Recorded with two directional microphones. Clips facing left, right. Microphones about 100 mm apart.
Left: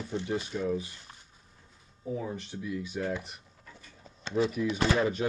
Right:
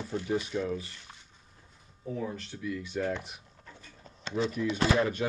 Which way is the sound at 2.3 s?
20° left (ahead or behind).